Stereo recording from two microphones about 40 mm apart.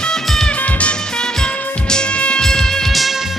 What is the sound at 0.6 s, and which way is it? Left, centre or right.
Music, left.